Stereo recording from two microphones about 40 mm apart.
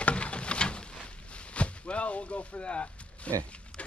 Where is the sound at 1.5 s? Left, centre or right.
Left.